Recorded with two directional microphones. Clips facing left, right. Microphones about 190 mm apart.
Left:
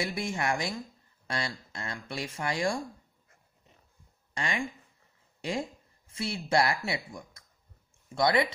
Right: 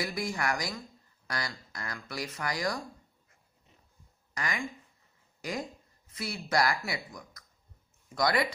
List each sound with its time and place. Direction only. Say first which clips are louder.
0.0 s speech: left 1 dB; 25° left (ahead or behind)
4.3 s speech: left 2 dB; 25° left (ahead or behind)